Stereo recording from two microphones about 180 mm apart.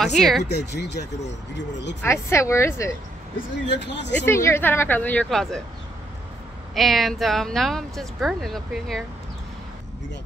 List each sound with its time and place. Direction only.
0.0 s speech: centre (ahead or behind)
0.4 s speech: 70° left (ahead or behind)
2.0 s a woman's voice: 15° left (ahead or behind)
3.7 s speech: 75° left (ahead or behind)
4.3 s a woman's voice: 15° left (ahead or behind)
6.7 s speech: centre (ahead or behind)